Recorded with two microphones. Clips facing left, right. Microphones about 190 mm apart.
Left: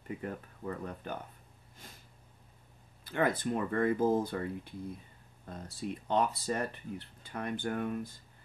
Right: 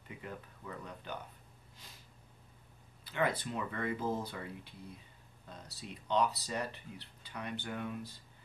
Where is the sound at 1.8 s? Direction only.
50° left (ahead or behind).